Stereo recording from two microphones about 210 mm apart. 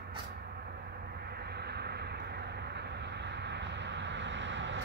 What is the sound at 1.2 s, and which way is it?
Vehicle, 50° right (ahead or behind).